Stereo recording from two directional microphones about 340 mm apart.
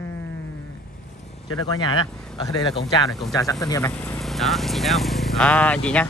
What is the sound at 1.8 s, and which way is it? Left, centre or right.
Speech, centre.